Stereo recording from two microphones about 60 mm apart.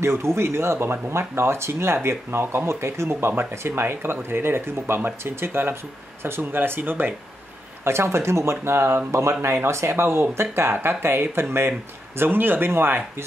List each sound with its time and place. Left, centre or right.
0.0 s speech: right
7.8 s speech: right